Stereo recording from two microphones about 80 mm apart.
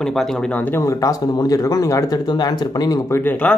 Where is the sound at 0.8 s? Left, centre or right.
Left.